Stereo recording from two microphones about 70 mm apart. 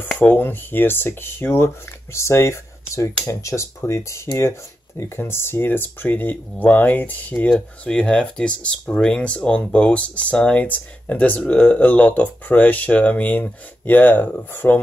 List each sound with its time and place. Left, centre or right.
0.2 s speech: left
7.4 s speech: centre; by 14.8 s left